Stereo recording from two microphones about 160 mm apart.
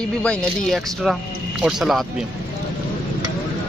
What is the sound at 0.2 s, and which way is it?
Speech, 5° left (ahead or behind).